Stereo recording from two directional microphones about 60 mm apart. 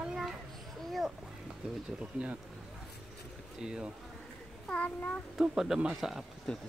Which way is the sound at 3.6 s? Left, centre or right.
Centre.